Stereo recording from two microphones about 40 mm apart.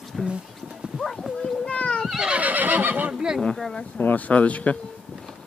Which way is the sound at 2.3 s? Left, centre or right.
Right.